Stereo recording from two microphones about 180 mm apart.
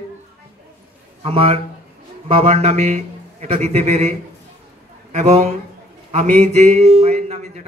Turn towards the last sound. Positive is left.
turn(degrees=-35)  # may be behind; listen again after turning